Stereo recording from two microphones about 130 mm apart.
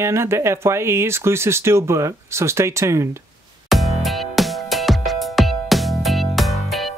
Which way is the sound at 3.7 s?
Centre (ahead or behind).